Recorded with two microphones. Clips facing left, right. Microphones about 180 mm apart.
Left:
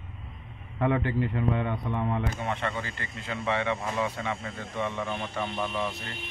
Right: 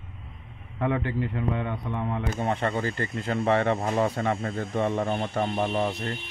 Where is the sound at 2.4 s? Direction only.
40° right (ahead or behind).